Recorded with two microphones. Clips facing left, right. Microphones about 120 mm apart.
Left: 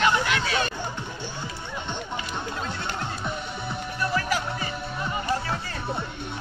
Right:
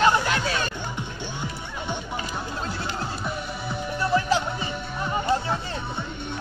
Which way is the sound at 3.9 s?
25° right (ahead or behind).